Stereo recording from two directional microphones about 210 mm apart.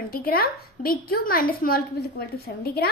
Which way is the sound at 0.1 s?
45° left (ahead or behind).